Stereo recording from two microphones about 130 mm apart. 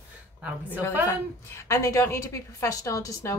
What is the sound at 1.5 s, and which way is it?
A woman's voice, 25° left (ahead or behind).